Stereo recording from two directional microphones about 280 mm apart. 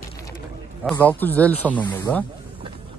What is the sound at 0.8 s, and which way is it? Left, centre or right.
A man's voice, centre.